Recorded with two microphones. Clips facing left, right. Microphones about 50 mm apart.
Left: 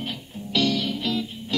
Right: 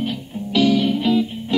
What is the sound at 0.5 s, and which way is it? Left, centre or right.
Music, centre.